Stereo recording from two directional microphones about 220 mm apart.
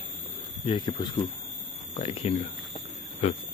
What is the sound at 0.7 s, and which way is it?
Speech, 25° left (ahead or behind).